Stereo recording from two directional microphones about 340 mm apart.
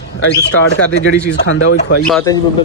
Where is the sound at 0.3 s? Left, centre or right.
Left.